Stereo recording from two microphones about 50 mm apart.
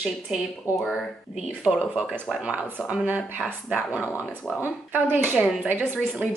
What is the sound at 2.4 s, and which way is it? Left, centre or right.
Speech, right.